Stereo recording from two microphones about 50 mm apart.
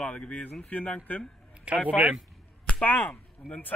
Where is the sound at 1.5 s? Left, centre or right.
Right.